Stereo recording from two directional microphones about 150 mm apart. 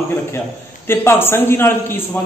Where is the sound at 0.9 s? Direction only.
15° left (ahead or behind).